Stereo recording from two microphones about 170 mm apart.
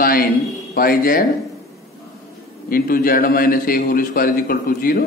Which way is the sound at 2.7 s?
60° left (ahead or behind).